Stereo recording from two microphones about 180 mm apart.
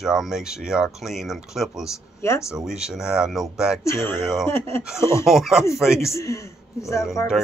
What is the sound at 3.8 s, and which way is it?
Speech, 15° left (ahead or behind).